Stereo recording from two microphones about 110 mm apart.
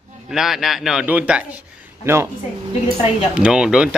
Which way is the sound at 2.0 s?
25° right (ahead or behind).